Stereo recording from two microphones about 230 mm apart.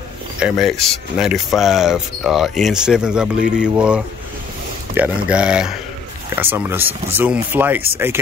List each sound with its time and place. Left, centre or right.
0.4 s speech: centre